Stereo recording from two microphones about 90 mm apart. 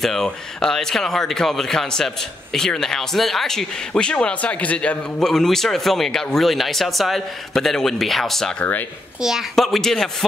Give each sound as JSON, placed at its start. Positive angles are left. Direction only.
{"t": 0.0, "sound": "speech", "side_deg": 5}
{"t": 8.5, "sound": "speech", "side_deg": 20}
{"t": 9.2, "sound": "speech", "side_deg": -5}